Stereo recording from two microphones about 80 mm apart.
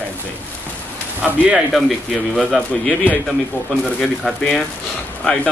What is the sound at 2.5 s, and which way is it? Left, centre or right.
Speech, centre.